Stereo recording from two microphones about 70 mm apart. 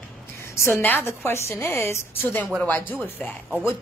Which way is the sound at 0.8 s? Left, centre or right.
Left.